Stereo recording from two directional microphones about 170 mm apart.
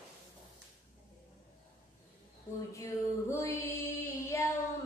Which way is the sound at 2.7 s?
15° left (ahead or behind).